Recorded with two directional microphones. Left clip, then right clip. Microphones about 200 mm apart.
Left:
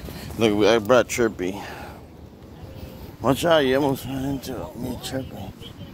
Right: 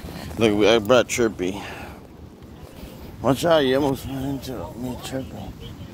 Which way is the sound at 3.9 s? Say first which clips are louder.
Even; 30° left (ahead or behind).